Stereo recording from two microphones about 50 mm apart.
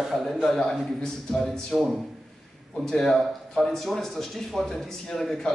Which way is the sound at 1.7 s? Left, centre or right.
Centre.